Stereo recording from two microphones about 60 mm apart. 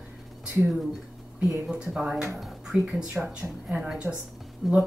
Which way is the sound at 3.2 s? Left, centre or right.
Centre.